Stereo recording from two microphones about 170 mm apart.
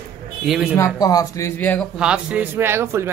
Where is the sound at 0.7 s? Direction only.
20° left (ahead or behind).